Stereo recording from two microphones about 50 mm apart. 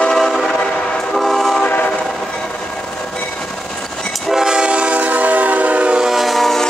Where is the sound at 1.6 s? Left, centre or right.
Left.